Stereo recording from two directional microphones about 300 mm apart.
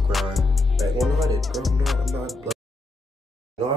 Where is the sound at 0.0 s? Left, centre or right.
Centre.